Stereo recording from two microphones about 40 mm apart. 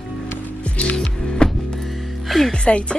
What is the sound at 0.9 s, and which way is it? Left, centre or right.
Music, left.